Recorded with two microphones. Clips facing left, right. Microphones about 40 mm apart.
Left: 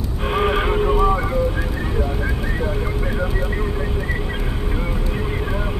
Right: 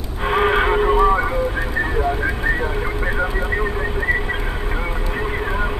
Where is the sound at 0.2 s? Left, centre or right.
Centre.